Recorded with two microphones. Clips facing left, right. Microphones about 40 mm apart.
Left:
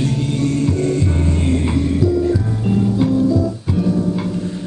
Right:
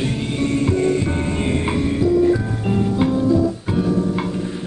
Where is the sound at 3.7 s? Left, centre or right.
Right.